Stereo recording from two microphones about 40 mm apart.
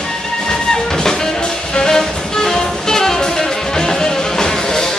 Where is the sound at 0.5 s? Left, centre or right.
Centre.